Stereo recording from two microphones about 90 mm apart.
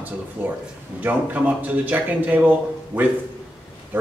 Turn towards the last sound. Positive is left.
turn(degrees=-20)  # may be behind; listen again after turning